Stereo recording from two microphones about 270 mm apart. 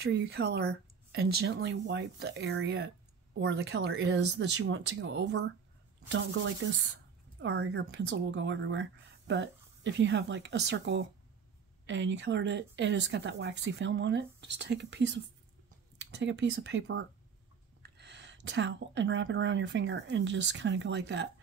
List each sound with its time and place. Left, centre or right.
0.0 s speech: right